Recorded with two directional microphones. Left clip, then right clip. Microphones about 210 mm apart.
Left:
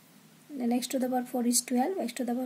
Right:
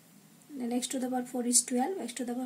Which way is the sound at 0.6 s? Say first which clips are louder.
Left 4 dB; 45° left (ahead or behind).